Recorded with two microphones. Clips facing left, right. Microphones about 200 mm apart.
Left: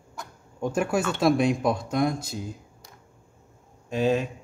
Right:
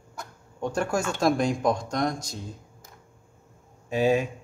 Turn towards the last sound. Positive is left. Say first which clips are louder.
# right 1 dB
turn(degrees=-10)  # may be behind; listen again after turning